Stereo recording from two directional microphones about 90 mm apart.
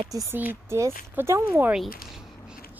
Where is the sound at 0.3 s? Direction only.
25° right (ahead or behind).